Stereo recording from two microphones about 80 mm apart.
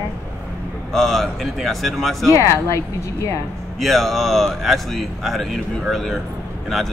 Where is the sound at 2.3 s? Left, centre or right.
Left.